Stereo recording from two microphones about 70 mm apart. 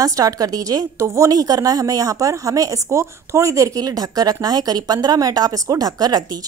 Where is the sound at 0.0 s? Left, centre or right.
Right.